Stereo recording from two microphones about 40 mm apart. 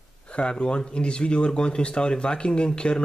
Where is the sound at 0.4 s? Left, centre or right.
Left.